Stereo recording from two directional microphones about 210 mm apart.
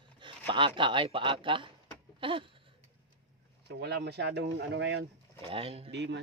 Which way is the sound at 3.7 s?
50° right (ahead or behind).